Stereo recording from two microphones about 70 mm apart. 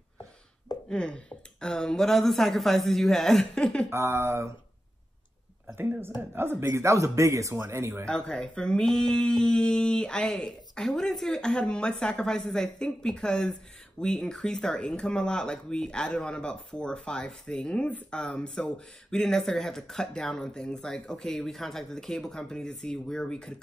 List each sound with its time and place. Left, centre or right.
0.8 s speech: centre
3.9 s speech: right
5.8 s speech: right
8.1 s speech: centre